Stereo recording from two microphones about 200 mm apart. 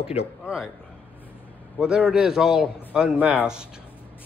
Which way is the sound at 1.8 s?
5° right (ahead or behind).